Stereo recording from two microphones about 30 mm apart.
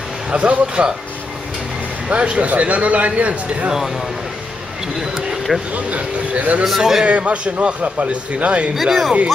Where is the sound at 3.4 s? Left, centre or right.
Right.